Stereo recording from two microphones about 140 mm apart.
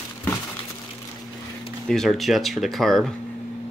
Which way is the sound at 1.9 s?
Centre (ahead or behind).